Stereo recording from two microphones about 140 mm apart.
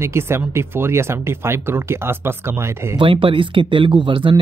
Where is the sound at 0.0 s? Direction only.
20° right (ahead or behind).